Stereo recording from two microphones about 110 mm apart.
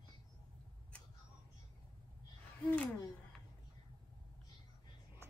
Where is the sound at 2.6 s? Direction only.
15° left (ahead or behind).